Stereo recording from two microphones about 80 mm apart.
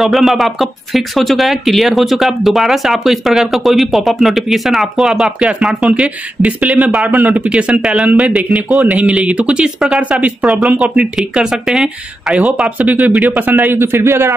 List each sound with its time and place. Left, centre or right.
0.0 s speech: centre; by 14.3 s right